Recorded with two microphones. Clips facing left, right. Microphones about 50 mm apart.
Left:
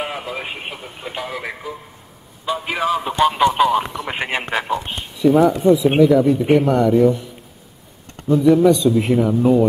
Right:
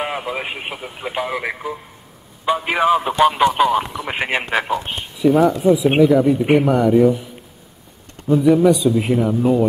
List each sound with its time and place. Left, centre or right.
0.0 s a man's voice: centre
3.2 s speech: centre
8.3 s a man's voice: centre